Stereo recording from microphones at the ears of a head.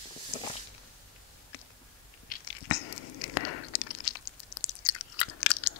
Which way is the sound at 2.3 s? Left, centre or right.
Left.